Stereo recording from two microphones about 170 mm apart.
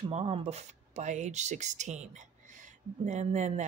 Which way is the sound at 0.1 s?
35° right (ahead or behind).